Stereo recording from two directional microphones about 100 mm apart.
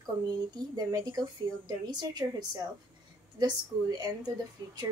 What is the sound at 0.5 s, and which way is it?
A woman's voice, 40° right (ahead or behind).